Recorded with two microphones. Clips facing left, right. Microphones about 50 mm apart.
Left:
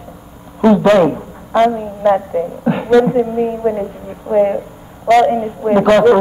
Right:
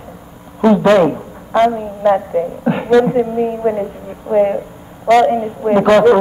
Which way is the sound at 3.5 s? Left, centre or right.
Centre.